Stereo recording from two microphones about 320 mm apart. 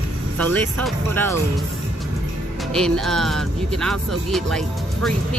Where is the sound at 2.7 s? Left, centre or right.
Centre.